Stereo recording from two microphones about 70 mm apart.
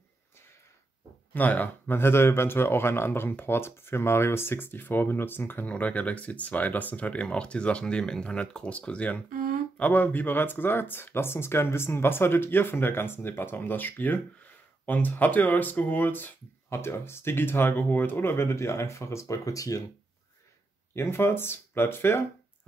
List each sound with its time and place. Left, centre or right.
1.3 s speech: left
20.9 s speech: left